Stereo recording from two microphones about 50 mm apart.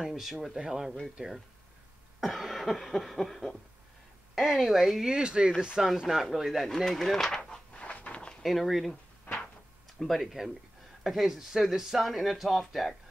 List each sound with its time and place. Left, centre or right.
0.0 s cough: centre
2.1 s cough: centre
5.0 s speech: centre
7.8 s a sound: left
8.4 s cough: centre
9.3 s a sound: left
9.9 s speech: centre
11.1 s cough: centre
11.3 s speech: centre
12.0 s cough: centre